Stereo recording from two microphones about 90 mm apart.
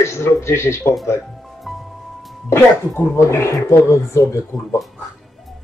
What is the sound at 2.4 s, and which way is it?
Speech, 25° left (ahead or behind).